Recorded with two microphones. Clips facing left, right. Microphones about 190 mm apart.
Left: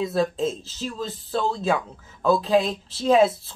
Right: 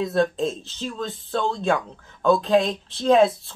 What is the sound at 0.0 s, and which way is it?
Speech, centre (ahead or behind).